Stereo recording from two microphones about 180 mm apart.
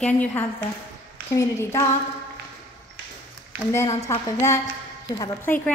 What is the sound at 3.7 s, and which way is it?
Speech, 15° left (ahead or behind).